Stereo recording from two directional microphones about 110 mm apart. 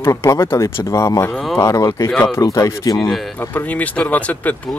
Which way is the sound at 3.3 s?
15° left (ahead or behind).